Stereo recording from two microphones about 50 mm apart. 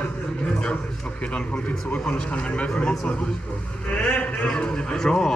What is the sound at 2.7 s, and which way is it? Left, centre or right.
Speech, centre.